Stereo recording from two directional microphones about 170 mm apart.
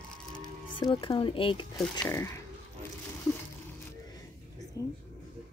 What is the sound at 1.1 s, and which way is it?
Speech, 30° left (ahead or behind).